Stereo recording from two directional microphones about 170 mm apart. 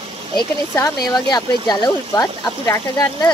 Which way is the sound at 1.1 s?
25° left (ahead or behind).